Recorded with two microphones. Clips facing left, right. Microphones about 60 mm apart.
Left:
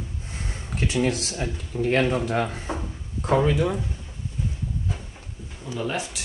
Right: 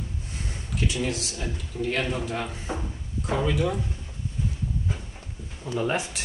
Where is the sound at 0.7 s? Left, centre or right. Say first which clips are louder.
Left 4 dB; left.